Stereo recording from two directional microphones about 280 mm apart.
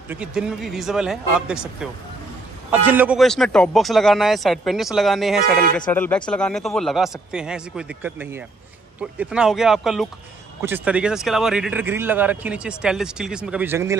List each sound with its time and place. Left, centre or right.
0.1 s speech: centre